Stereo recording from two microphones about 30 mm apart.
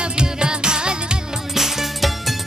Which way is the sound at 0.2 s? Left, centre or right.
Right.